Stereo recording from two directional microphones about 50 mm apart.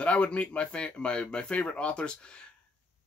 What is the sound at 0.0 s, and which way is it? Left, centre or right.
Speech, left.